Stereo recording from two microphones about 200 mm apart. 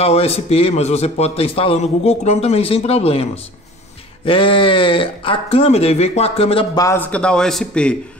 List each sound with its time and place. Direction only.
0.0 s a man's voice: 30° left (ahead or behind); by 7.9 s 5° left (ahead or behind)